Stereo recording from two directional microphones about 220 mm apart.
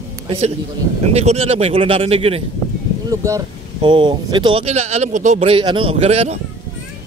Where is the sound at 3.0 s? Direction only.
15° right (ahead or behind).